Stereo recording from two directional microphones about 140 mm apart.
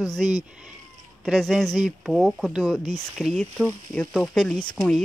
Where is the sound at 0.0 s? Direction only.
Centre (ahead or behind).